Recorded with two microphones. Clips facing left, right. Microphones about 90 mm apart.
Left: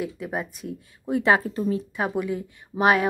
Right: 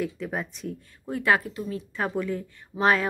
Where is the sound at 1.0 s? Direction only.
20° left (ahead or behind).